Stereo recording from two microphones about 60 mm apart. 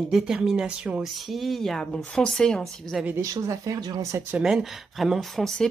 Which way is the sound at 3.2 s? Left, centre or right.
Right.